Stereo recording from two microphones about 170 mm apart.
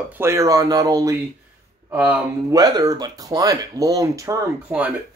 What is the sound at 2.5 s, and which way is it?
Speech, 20° right (ahead or behind).